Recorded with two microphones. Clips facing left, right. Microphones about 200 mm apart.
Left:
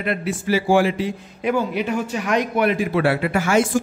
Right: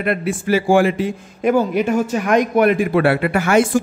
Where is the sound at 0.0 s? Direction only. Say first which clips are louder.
Right 4 dB; 55° right (ahead or behind).